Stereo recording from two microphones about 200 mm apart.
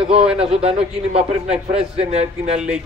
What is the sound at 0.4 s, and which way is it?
A man's voice, 30° right (ahead or behind).